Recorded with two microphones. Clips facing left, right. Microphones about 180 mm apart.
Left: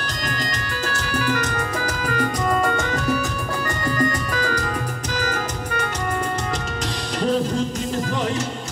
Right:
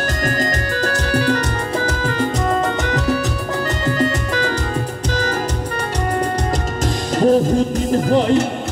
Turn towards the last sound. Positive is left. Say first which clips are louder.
# right 8 dB
turn(degrees=-45)  # may be behind; listen again after turning